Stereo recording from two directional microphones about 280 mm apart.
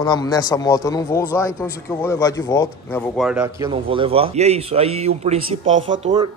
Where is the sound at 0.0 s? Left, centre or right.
Centre.